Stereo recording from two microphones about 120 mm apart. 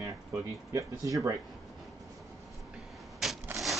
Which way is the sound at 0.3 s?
25° right (ahead or behind).